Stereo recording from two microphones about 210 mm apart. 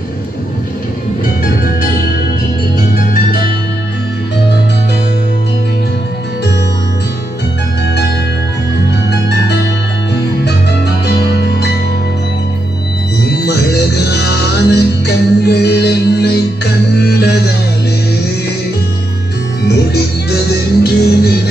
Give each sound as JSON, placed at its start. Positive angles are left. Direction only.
{"t": 1.4, "sound": "music", "side_deg": 40}
{"t": 11.1, "sound": "music", "side_deg": 50}
{"t": 13.5, "sound": "music", "side_deg": 50}
{"t": 19.9, "sound": "music", "side_deg": 50}